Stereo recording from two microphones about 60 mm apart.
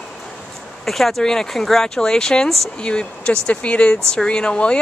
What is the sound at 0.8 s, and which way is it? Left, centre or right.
Speech, centre.